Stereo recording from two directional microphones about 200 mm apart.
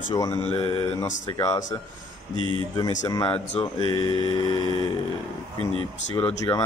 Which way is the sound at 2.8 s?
15° left (ahead or behind).